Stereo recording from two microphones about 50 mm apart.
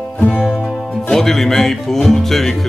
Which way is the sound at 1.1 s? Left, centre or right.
Centre.